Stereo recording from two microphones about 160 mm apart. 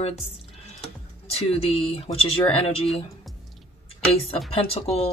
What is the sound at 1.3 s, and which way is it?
Speech, 40° left (ahead or behind).